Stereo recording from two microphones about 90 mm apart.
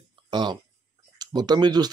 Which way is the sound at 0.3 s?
55° right (ahead or behind).